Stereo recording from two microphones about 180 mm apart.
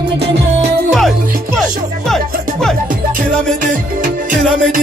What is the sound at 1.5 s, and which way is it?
Music, 5° left (ahead or behind).